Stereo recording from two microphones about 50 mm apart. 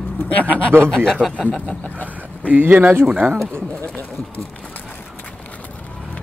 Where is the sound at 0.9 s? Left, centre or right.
Centre.